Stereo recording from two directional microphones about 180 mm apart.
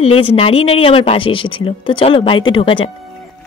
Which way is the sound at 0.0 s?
30° left (ahead or behind).